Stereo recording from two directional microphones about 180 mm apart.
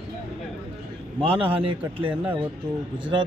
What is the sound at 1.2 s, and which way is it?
Speech, 30° right (ahead or behind).